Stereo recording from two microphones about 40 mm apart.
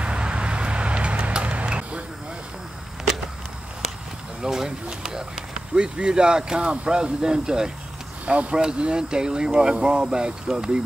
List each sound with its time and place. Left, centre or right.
0.0 s vehicle: right
4.4 s speech: centre
8.3 s speech: right